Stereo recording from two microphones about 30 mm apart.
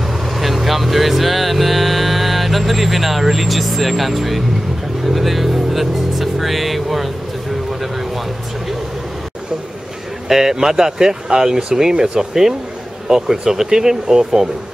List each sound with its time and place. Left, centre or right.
0.4 s speech: centre
10.2 s speech: centre
11.9 s speech: right
12.2 s speech: centre